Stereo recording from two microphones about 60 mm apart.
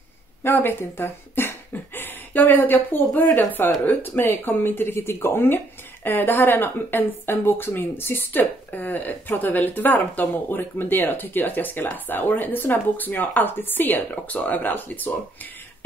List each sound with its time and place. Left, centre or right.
0.4 s speech: left